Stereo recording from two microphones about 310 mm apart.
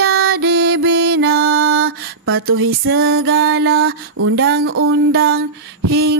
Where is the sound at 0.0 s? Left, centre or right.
Right.